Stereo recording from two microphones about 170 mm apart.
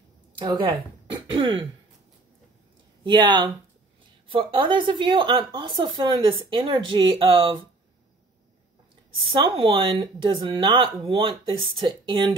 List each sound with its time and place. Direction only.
0.4 s a woman's voice: 25° right (ahead or behind)
1.2 s throat clearing: 30° right (ahead or behind)
3.0 s a woman's voice: 25° right (ahead or behind)
9.2 s a woman's voice: 30° right (ahead or behind)